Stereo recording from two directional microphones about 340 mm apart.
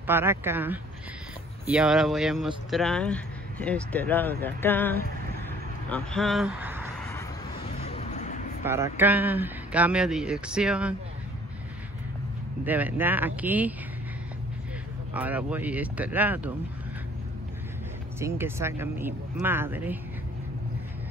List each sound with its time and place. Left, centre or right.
0.0 s speech: centre
7.1 s a sound: centre
8.6 s speech: centre
12.6 s speech: centre
15.1 s speech: centre
18.2 s speech: centre